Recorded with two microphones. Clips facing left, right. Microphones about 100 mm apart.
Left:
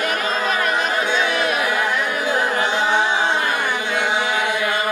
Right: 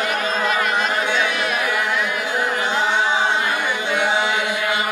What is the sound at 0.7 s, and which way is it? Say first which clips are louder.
Chant: even; 20° left (ahead or behind).